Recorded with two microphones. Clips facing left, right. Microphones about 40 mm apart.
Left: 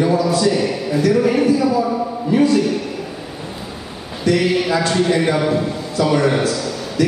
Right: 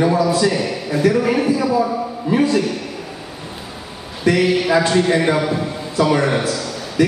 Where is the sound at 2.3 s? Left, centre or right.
Centre.